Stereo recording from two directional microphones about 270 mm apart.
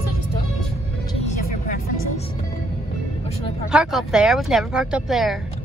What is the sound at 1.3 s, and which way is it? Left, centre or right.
Vehicle, left.